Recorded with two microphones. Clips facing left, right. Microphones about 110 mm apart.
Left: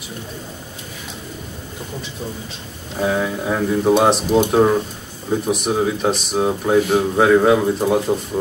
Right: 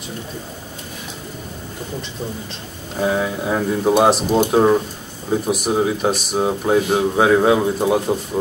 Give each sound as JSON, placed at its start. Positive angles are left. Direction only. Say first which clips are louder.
{"t": 3.0, "sound": "speech", "louder": "even", "side_deg": -5}